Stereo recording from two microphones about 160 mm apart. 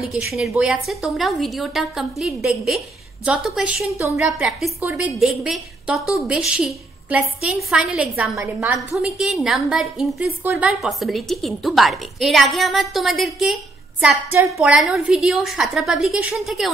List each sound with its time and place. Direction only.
0.0 s a woman's voice: centre (ahead or behind)
8.7 s a woman's voice: centre (ahead or behind)